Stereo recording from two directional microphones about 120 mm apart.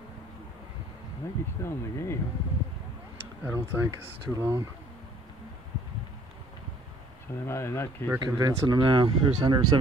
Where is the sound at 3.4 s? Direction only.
20° right (ahead or behind).